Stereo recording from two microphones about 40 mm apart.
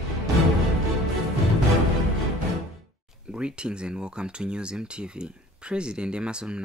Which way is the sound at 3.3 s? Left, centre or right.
Right.